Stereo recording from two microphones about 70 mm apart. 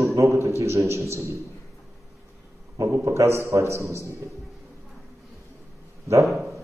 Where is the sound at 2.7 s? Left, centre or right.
Right.